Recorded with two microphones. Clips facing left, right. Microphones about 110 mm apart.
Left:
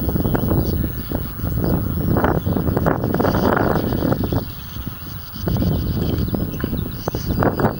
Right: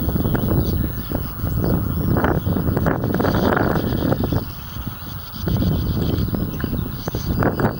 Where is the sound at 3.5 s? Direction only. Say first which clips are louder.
Left 1 dB; 35° left (ahead or behind).